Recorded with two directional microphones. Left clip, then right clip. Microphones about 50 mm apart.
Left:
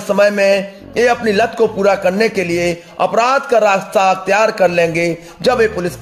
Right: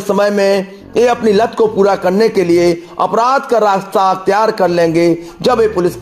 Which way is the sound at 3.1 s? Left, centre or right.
Right.